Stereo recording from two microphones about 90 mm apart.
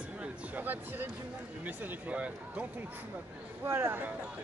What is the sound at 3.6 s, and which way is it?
Speech, 25° right (ahead or behind).